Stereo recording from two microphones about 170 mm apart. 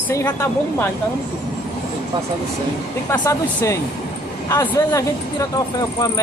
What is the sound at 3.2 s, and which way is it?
Speech, 20° left (ahead or behind).